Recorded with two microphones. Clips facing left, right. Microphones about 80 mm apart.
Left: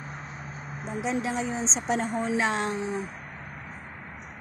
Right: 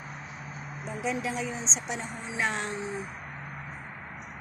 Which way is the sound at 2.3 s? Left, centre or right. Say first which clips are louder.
Left 2 dB; left.